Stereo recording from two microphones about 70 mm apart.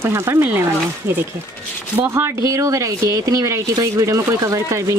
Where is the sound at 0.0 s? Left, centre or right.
Right.